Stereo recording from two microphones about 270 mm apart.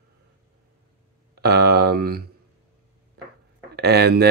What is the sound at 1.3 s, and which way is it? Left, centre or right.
Speech, right.